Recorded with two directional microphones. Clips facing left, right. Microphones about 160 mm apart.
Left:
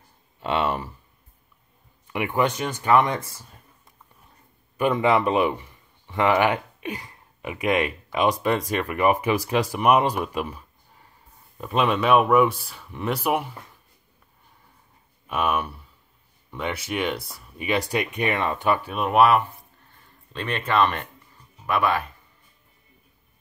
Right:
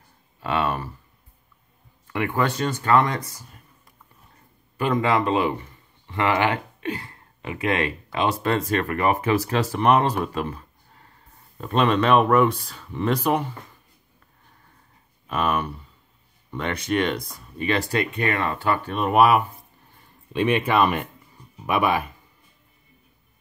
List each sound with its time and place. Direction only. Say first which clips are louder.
0.4 s speech: even; 25° left (ahead or behind)
2.0 s speech: even; 15° left (ahead or behind)
5.0 s speech: left 2 dB; 20° left (ahead or behind)
11.6 s speech: right 2 dB; 5° left (ahead or behind)
15.2 s speech: right 1 dB; 10° left (ahead or behind)
18.9 s speech: right 1 dB; centre (ahead or behind)